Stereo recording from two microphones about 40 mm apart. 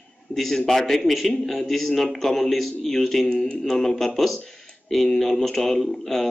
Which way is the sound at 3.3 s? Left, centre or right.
Centre.